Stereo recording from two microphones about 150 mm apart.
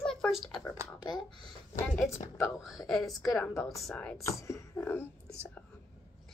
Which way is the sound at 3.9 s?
5° left (ahead or behind).